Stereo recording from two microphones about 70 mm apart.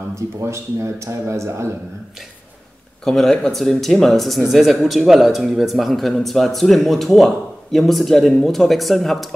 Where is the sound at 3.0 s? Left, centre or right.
Centre.